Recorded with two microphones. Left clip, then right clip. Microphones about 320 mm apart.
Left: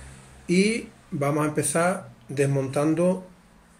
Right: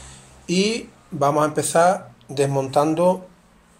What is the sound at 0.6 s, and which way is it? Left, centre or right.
Speech, right.